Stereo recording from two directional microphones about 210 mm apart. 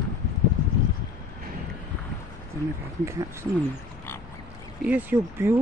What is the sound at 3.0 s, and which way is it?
Speech, 15° right (ahead or behind).